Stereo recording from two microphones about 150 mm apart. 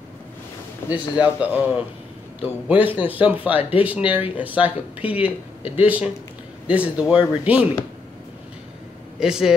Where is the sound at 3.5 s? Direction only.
40° left (ahead or behind).